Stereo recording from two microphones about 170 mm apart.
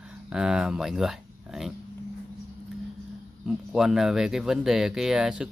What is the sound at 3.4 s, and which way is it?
Speech, 5° right (ahead or behind).